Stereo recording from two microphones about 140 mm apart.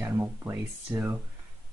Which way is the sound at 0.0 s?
15° right (ahead or behind).